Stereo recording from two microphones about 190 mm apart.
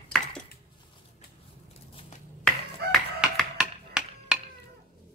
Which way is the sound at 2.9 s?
Centre (ahead or behind).